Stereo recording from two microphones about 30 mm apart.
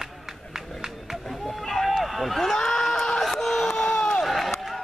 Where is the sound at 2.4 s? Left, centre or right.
Centre.